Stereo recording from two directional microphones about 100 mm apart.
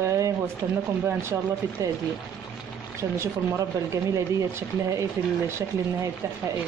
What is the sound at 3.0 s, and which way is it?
Speech, 30° right (ahead or behind).